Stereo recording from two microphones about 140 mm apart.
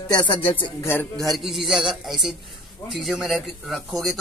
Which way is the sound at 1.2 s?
Centre (ahead or behind).